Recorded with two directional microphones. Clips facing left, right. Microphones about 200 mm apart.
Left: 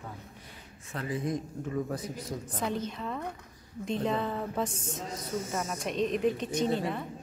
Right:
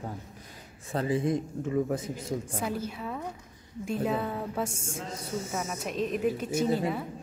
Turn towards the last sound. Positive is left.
turn(degrees=-5)  # may be behind; listen again after turning